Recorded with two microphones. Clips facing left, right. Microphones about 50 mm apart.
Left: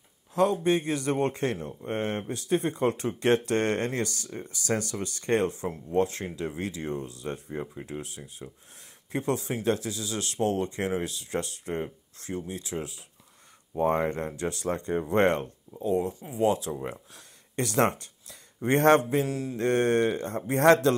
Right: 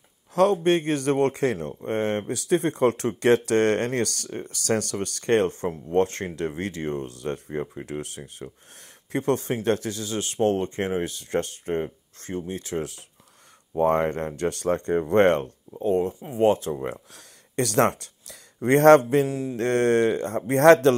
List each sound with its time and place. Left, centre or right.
0.3 s speech: right
1.3 s speech: right
1.9 s speech: right
8.4 s speech: right
9.1 s speech: right
10.1 s speech: right
13.7 s speech: right
16.9 s speech: right
19.2 s mantra: right
19.5 s speech: right